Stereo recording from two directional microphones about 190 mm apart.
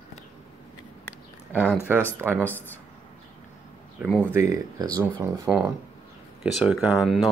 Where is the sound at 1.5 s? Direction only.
5° right (ahead or behind).